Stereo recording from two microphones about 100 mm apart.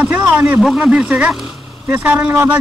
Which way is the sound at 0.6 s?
5° right (ahead or behind).